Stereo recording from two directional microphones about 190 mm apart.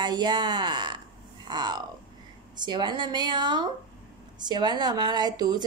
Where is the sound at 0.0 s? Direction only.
25° right (ahead or behind).